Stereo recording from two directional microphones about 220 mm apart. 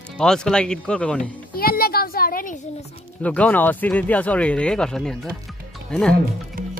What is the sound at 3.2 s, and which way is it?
Speech, 5° left (ahead or behind).